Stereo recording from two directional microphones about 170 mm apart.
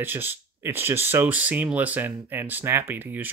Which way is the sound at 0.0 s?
10° right (ahead or behind).